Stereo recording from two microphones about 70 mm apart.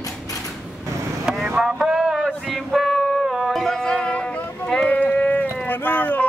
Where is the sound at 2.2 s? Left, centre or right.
Centre.